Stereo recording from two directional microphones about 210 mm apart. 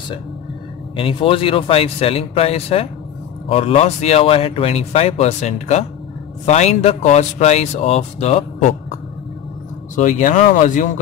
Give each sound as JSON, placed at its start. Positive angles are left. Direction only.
{"t": 0.9, "sound": "speech", "side_deg": 25}
{"t": 9.9, "sound": "speech", "side_deg": 35}